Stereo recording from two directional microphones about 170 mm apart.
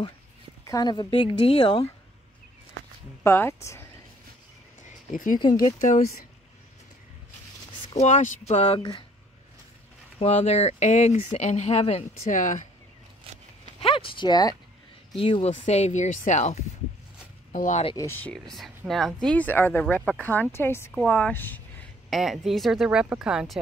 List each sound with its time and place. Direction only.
0.7 s speech: 25° left (ahead or behind)
3.3 s speech: 15° left (ahead or behind)
4.8 s a sound: 50° left (ahead or behind)
5.4 s speech: 25° left (ahead or behind)
5.8 s speech: 45° left (ahead or behind)
7.9 s speech: 40° left (ahead or behind)
10.1 s speech: 40° left (ahead or behind)
13.7 s speech: 30° left (ahead or behind)
17.9 s speech: 15° left (ahead or behind)
22.1 s a woman's voice: centre (ahead or behind)